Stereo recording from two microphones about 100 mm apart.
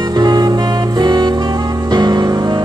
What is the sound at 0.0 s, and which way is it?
Music, 45° right (ahead or behind).